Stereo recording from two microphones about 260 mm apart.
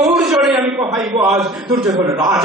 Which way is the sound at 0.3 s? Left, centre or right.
Centre.